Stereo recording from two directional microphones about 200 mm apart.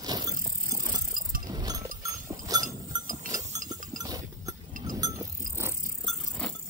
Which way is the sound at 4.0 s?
20° right (ahead or behind).